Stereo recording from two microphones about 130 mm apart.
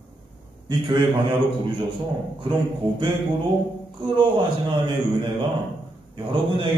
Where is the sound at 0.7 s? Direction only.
40° right (ahead or behind).